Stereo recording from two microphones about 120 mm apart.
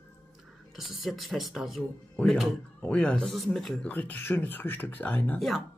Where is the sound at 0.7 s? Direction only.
Centre (ahead or behind).